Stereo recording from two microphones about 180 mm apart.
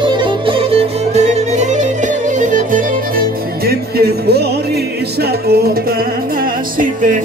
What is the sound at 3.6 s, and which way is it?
Music, 60° right (ahead or behind).